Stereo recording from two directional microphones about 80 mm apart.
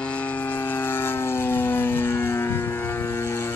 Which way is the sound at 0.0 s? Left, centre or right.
Centre.